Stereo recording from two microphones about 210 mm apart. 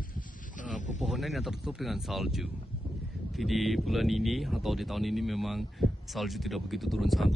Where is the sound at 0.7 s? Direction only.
35° left (ahead or behind).